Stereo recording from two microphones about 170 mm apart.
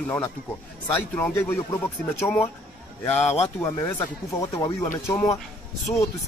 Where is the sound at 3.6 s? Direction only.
15° left (ahead or behind).